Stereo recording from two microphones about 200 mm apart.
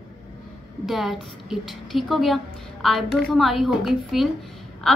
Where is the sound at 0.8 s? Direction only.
Centre (ahead or behind).